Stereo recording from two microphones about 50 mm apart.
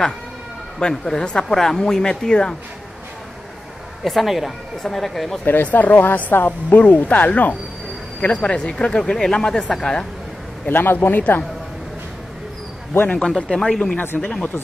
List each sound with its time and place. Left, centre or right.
0.7 s speech: centre
4.0 s speech: centre
5.4 s speech: left; by 10.0 s centre
10.7 s speech: left
13.6 s speech: centre
14.0 s speech: left